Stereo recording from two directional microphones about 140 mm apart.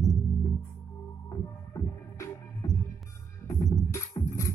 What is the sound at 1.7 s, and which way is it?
Music, 25° left (ahead or behind).